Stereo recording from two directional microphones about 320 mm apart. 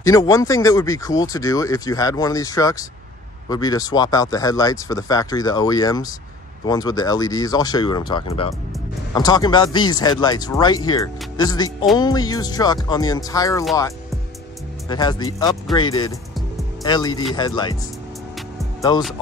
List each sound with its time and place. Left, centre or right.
0.0 s speech: centre
14.9 s speech: centre
18.8 s speech: centre